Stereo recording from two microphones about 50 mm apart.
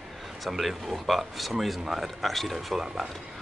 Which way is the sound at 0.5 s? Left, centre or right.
Centre.